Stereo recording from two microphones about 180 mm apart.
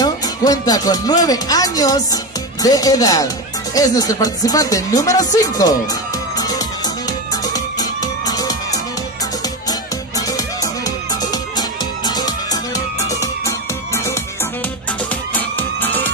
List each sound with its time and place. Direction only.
0.0 s speech: 20° left (ahead or behind)
7.1 s music: 20° left (ahead or behind)
15.3 s music: 10° left (ahead or behind)